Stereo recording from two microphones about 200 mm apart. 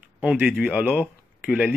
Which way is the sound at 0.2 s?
5° right (ahead or behind).